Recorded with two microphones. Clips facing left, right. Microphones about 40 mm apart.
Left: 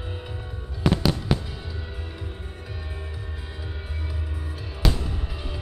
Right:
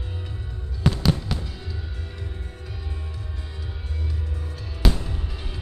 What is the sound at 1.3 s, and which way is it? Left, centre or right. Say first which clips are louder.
Fireworks: left 6 dB; centre.